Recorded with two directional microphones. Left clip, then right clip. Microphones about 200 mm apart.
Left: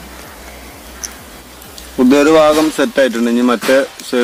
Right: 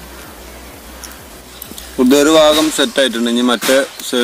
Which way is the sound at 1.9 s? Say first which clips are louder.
Left 1 dB; 20° left (ahead or behind).